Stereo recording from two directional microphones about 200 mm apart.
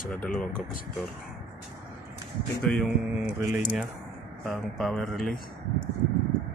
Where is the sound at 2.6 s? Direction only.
5° left (ahead or behind).